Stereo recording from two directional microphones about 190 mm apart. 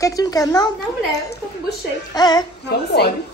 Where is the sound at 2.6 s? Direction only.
60° left (ahead or behind).